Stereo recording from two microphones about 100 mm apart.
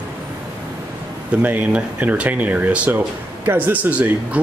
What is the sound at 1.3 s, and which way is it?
A man's voice, 15° right (ahead or behind).